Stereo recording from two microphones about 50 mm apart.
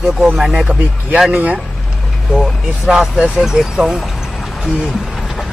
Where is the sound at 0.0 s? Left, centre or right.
Centre.